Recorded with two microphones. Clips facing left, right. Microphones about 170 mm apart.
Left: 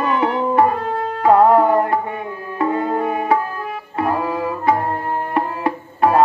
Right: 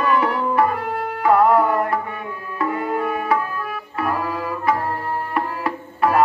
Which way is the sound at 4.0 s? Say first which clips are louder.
Left 4 dB; 30° left (ahead or behind).